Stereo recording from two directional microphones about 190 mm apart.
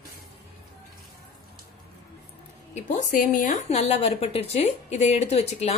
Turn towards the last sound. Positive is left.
turn(degrees=35)  # may be behind; listen again after turning